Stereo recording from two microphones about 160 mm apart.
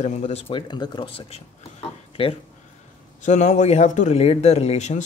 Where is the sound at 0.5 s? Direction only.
25° left (ahead or behind).